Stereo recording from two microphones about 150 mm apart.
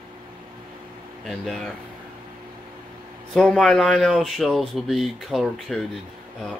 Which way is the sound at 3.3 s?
5° left (ahead or behind).